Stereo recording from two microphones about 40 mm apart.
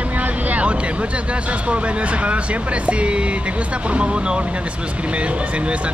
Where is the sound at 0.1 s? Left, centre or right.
Right.